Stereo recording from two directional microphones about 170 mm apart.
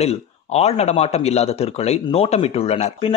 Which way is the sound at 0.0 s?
40° left (ahead or behind).